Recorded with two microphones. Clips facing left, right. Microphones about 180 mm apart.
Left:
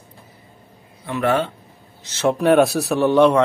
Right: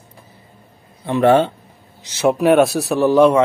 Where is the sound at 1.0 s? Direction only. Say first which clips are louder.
Right 7 dB; 30° right (ahead or behind).